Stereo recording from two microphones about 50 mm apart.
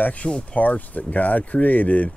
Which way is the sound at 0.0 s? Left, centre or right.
Left.